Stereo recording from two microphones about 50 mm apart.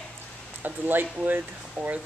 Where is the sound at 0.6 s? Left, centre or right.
Right.